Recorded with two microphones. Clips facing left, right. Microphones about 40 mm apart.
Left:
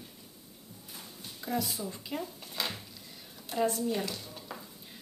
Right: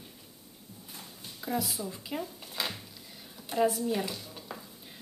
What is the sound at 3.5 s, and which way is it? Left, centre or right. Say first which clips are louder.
A woman's voice: right 2 dB; centre.